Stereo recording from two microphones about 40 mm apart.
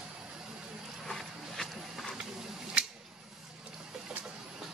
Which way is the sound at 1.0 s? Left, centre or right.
Centre.